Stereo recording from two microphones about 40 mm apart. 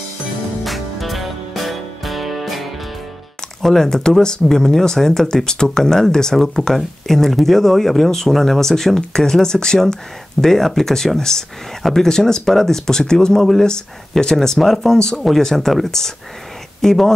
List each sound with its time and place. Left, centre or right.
0.7 s music: centre
3.6 s speech: centre
13.4 s speech: centre
14.6 s speech: centre
14.9 s speech: centre
15.1 s speech: centre